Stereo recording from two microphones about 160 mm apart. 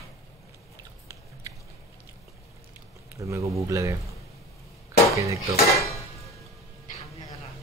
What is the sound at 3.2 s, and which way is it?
Speech, 20° right (ahead or behind).